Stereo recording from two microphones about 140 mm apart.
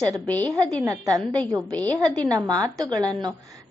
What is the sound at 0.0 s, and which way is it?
A woman's voice, 25° right (ahead or behind).